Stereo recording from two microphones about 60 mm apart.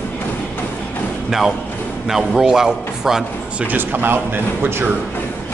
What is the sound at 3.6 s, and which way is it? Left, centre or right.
Speech, right.